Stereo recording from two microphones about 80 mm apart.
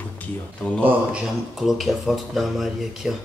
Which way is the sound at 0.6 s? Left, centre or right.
Centre.